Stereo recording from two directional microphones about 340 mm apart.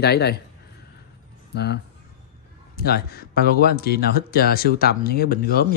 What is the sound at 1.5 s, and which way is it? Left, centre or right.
Speech, left.